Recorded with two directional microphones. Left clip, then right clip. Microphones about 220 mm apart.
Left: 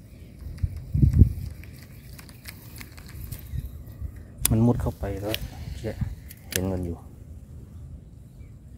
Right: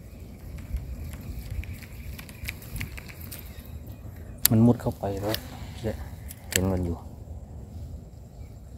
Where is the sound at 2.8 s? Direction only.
10° left (ahead or behind).